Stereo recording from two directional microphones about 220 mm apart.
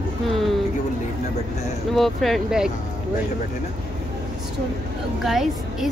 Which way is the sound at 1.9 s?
Centre (ahead or behind).